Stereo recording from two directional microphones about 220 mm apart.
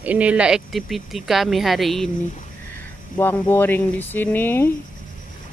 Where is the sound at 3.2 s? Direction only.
10° left (ahead or behind).